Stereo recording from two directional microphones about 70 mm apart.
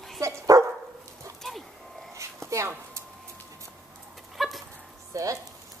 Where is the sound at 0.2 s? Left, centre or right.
Right.